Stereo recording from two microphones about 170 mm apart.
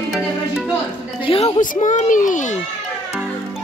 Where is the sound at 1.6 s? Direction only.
50° left (ahead or behind).